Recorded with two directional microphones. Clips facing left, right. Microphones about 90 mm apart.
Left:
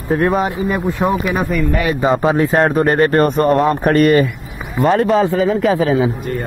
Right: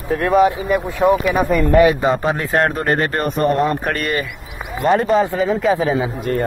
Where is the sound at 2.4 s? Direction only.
5° left (ahead or behind).